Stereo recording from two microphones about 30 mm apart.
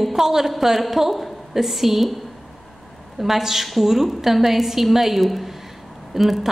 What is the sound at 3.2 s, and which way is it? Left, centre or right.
A woman's voice, centre.